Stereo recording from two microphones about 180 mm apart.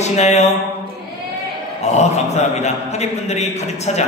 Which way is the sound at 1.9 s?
40° left (ahead or behind).